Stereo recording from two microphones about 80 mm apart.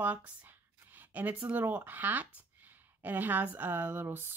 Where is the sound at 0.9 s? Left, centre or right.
Right.